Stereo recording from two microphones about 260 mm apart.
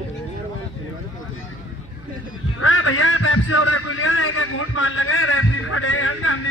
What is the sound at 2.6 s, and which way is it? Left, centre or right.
A man's voice, left.